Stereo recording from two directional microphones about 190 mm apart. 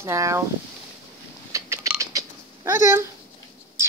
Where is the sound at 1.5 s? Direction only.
15° right (ahead or behind).